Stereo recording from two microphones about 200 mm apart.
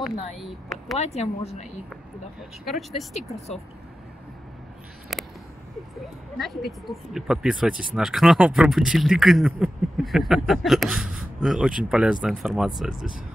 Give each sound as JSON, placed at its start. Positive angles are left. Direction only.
{"t": 0.4, "sound": "speech", "side_deg": 0}
{"t": 0.9, "sound": "speech", "side_deg": 30}
{"t": 2.6, "sound": "speech", "side_deg": 0}
{"t": 5.1, "sound": "a sound", "side_deg": 0}
{"t": 6.3, "sound": "speech", "side_deg": 0}